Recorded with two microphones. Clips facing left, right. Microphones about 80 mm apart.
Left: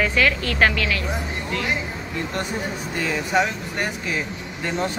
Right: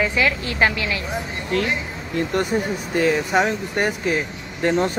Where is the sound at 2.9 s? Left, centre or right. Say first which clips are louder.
Right 4 dB; right.